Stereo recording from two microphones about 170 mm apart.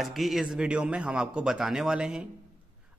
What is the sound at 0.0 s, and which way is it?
A man's voice, centre (ahead or behind).